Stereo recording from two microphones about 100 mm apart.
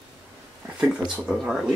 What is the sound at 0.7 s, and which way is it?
Speech, 10° right (ahead or behind).